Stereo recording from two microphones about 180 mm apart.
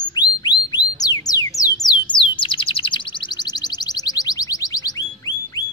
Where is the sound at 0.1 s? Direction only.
25° left (ahead or behind).